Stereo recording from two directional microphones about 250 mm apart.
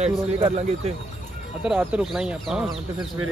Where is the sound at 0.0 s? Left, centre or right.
Right.